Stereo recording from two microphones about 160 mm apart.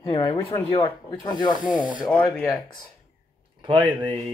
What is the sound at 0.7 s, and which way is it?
Speech, 30° left (ahead or behind).